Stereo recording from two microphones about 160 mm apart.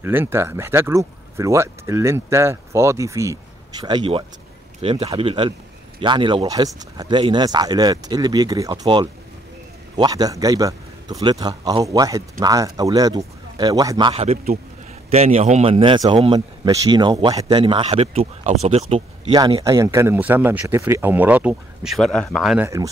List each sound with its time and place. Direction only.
0.0 s a man's voice: 15° right (ahead or behind)
15.0 s a man's voice: 40° right (ahead or behind)
19.4 s speech: 25° right (ahead or behind); by 22.7 s centre (ahead or behind)